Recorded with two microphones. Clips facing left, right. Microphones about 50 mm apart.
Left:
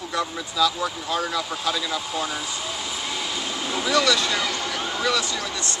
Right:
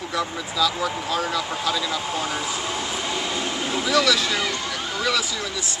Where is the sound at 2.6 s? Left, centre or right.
Right.